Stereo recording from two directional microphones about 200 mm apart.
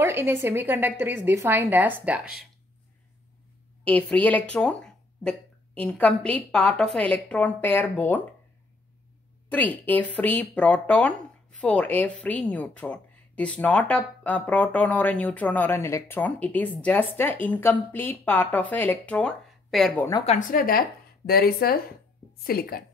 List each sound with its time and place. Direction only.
0.0 s a woman's voice: 10° right (ahead or behind)
3.8 s a woman's voice: 5° left (ahead or behind)
9.5 s a woman's voice: 10° left (ahead or behind)
20.2 s a woman's voice: 40° left (ahead or behind)